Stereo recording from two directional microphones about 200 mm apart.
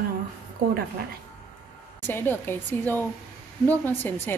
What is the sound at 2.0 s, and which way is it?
Speech, 10° left (ahead or behind).